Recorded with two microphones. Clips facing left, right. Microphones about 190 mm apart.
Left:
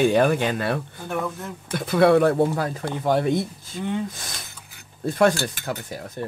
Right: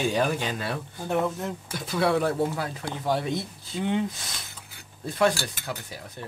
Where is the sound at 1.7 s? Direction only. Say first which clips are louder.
Left 8 dB; 60° left (ahead or behind).